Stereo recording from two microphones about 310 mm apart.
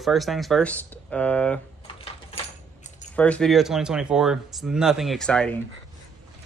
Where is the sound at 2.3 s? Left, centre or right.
Left.